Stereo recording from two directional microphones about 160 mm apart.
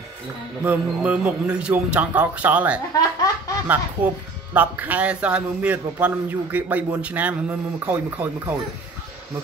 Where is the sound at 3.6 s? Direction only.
10° right (ahead or behind).